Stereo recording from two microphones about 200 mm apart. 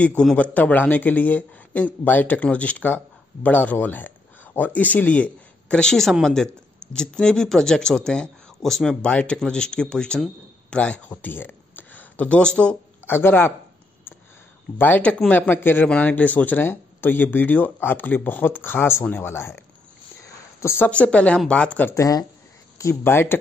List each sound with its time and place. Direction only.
0.0 s a man's voice: 5° left (ahead or behind)
14.1 s a sound: 10° left (ahead or behind)
14.8 s speech: 10° left (ahead or behind)
20.6 s speech: 10° left (ahead or behind)